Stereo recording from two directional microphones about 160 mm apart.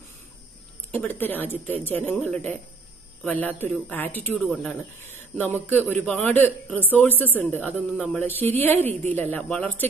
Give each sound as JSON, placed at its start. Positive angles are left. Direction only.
{"t": 0.9, "sound": "speech", "side_deg": 10}